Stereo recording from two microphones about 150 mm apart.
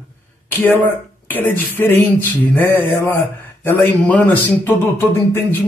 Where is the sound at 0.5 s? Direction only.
10° left (ahead or behind).